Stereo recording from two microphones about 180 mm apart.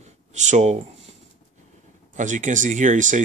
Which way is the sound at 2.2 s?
45° right (ahead or behind).